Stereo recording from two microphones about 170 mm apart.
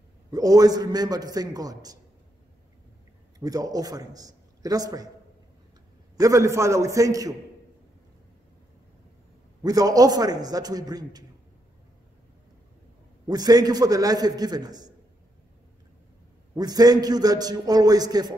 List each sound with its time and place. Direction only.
0.3 s a man's voice: 20° right (ahead or behind)
3.3 s a man's voice: 20° right (ahead or behind)
6.1 s a man's voice: 20° right (ahead or behind)
9.6 s a man's voice: 20° right (ahead or behind)
13.3 s a man's voice: 20° right (ahead or behind)
16.5 s a man's voice: 20° right (ahead or behind)